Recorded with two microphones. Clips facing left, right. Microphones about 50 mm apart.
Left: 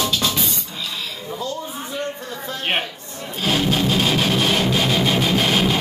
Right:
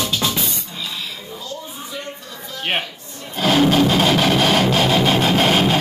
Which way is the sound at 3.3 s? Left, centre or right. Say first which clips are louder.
Right 5 dB; right.